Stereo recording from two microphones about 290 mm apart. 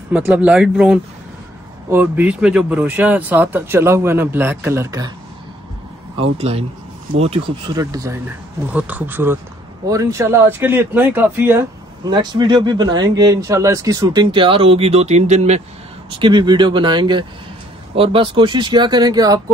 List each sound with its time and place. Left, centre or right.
0.1 s speech: centre
6.1 s speech: right